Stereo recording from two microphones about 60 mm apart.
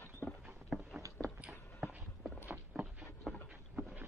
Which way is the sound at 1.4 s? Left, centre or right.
Centre.